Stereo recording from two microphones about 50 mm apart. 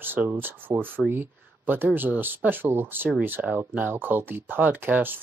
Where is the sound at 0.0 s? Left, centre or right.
Right.